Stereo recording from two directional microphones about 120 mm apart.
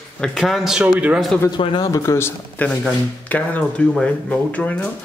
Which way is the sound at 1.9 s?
25° left (ahead or behind).